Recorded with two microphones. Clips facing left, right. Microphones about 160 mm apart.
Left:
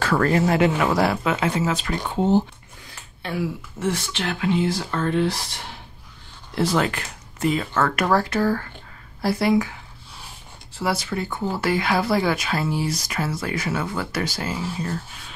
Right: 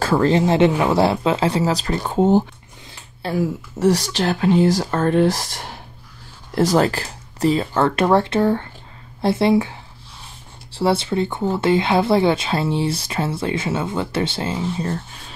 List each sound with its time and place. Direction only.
0.0 s speech: 25° right (ahead or behind)
2.0 s speech: 45° right (ahead or behind)
2.9 s speech: 35° right (ahead or behind)